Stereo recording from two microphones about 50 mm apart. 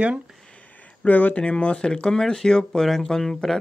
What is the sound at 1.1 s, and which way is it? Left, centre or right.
Speech, left.